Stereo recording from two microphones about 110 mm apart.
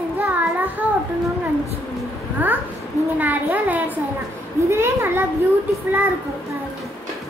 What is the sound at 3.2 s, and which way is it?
A child's voice, 15° right (ahead or behind).